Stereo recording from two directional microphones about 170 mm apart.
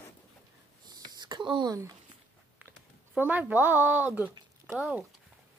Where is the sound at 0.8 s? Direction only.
25° right (ahead or behind).